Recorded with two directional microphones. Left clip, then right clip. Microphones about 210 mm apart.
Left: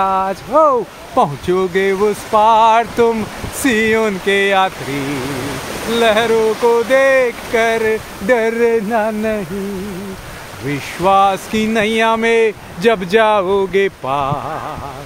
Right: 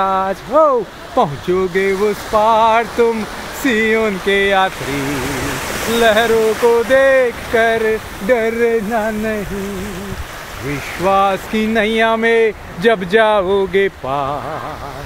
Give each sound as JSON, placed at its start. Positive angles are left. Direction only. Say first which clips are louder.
{"t": 0.0, "sound": "speech", "louder": "even", "side_deg": 5}
{"t": 5.9, "sound": "speech", "louder": "even", "side_deg": 0}
{"t": 8.3, "sound": "a sound", "louder": "left 1 dB", "side_deg": 20}
{"t": 11.1, "sound": "speech", "louder": "left 2 dB", "side_deg": 15}